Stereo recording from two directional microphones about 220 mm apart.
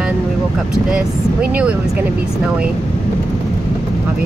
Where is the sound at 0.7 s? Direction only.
5° right (ahead or behind).